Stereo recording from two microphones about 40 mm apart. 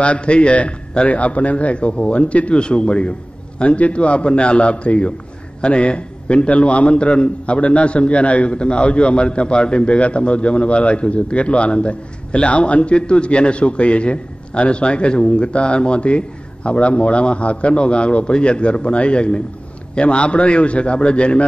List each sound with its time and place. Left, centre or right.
0.0 s a man's voice: left